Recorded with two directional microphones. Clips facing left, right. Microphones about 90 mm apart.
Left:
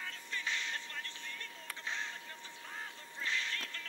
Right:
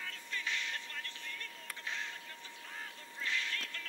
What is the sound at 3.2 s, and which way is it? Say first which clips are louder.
Music: even; 30° left (ahead or behind).